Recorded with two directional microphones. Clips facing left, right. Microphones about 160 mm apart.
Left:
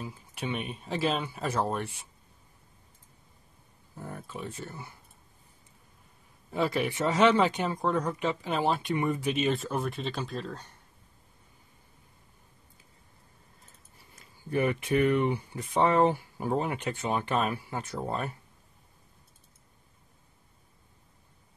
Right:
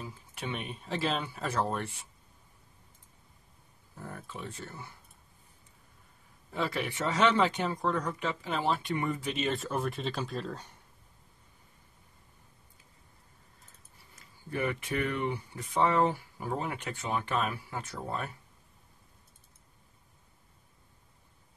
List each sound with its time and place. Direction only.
0.0 s speech: 5° left (ahead or behind)
4.0 s speech: 10° left (ahead or behind)
6.5 s speech: 15° left (ahead or behind)
14.5 s speech: 20° left (ahead or behind)